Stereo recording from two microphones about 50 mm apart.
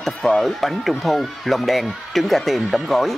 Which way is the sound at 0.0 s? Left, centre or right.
Centre.